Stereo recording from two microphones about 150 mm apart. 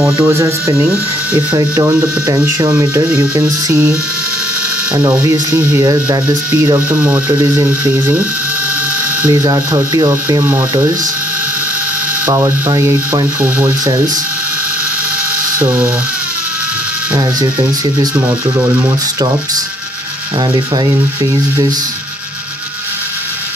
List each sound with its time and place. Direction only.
0.0 s speech: 20° right (ahead or behind)
4.9 s speech: 20° right (ahead or behind)
12.3 s speech: 20° right (ahead or behind)
15.6 s speech: 15° right (ahead or behind)
17.1 s speech: 25° right (ahead or behind)
20.5 s speech: 25° right (ahead or behind)